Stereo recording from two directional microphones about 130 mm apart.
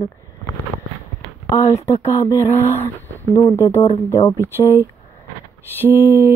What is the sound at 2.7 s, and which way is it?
Speech, 15° left (ahead or behind).